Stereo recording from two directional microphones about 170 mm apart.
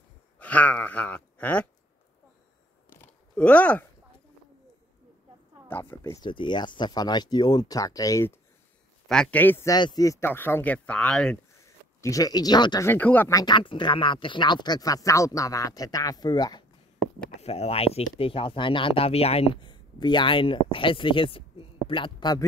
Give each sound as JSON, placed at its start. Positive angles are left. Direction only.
{"t": 0.4, "sound": "a sound", "side_deg": 10}
{"t": 3.0, "sound": "a sound", "side_deg": 10}
{"t": 5.7, "sound": "speech", "side_deg": 15}
{"t": 6.2, "sound": "speech", "side_deg": 25}
{"t": 9.0, "sound": "speech", "side_deg": 5}
{"t": 9.8, "sound": "speech", "side_deg": 25}
{"t": 11.6, "sound": "speech", "side_deg": 20}
{"t": 12.8, "sound": "speech", "side_deg": 10}
{"t": 17.4, "sound": "speech", "side_deg": 40}